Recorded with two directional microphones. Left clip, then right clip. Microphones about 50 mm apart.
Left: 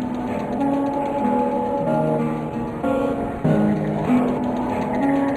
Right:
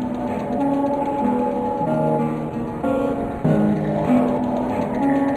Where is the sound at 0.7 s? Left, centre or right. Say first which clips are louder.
Right 1 dB; left.